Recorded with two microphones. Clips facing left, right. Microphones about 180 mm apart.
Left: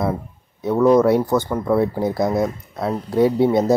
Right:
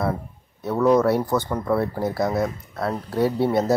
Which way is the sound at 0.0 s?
15° left (ahead or behind).